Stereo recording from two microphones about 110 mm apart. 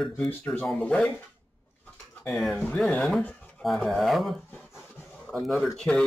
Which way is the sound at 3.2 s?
10° left (ahead or behind).